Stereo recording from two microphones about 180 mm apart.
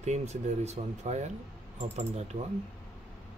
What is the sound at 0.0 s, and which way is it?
Speech, 40° right (ahead or behind).